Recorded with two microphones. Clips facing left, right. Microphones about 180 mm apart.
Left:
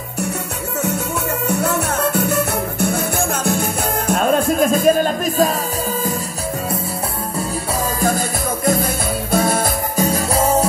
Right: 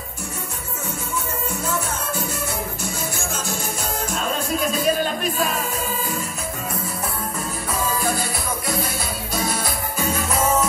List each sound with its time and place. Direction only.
1.5 s music: 70° left (ahead or behind); by 5.6 s 40° left (ahead or behind)
8.0 s music: 50° left (ahead or behind)
10.0 s music: 35° left (ahead or behind)